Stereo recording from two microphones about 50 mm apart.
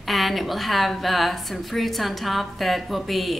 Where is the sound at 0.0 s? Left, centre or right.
Centre.